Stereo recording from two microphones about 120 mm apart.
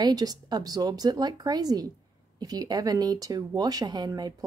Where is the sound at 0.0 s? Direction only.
35° right (ahead or behind).